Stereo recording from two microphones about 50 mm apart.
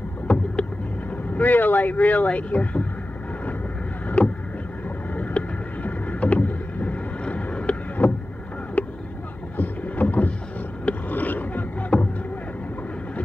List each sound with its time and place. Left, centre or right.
1.3 s speech: left
4.2 s vehicle: left
8.0 s boat: left
8.8 s vehicle: left
9.6 s boat: left
10.9 s a sound: left
11.9 s a sound: centre